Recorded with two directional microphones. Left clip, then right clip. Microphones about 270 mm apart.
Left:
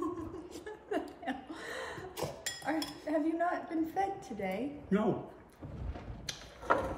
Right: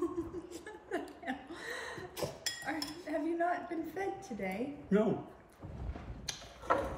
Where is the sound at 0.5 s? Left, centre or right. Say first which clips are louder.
Left 2 dB; centre.